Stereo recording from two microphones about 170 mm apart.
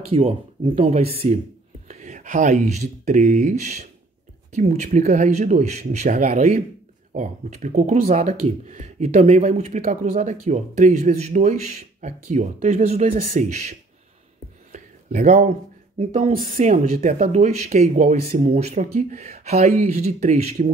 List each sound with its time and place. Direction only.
0.1 s speech: 35° right (ahead or behind)
9.5 s speech: 55° right (ahead or behind)
9.8 s speech: 40° right (ahead or behind)
14.7 s a sound: 45° right (ahead or behind)
16.0 s speech: 35° right (ahead or behind)
16.9 s speech: 50° right (ahead or behind)
18.5 s speech: 40° right (ahead or behind)